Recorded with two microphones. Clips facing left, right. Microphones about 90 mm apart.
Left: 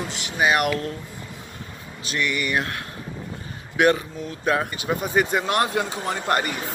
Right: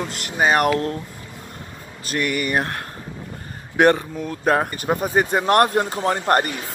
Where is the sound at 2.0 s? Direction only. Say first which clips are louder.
Right 3 dB; 50° right (ahead or behind).